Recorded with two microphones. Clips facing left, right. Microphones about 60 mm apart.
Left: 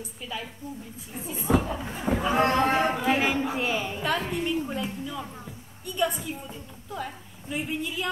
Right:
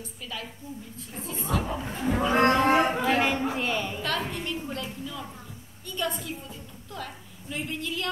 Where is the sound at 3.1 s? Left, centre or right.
Centre.